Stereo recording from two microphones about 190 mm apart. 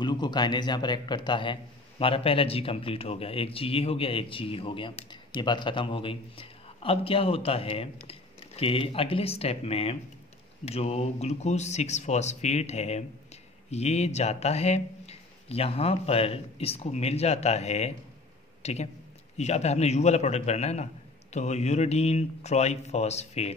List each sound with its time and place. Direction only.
0.0 s a man's voice: 25° left (ahead or behind)